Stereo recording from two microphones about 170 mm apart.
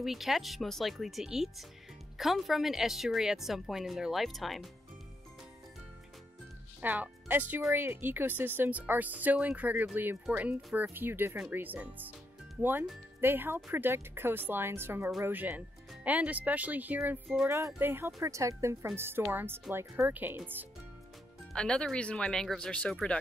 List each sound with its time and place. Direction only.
0.0 s a woman's voice: centre (ahead or behind)
6.8 s speech: 10° right (ahead or behind)
13.2 s speech: 10° right (ahead or behind)
21.5 s a woman's voice: 5° left (ahead or behind)